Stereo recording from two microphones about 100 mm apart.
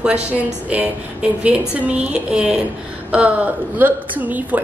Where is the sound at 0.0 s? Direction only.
10° right (ahead or behind).